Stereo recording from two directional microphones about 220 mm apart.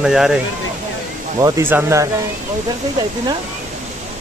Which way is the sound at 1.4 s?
15° right (ahead or behind).